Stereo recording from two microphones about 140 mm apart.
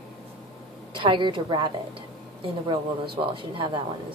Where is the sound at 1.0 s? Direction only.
35° right (ahead or behind).